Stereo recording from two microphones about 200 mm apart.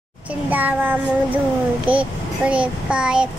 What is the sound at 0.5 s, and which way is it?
Child singing, 10° right (ahead or behind).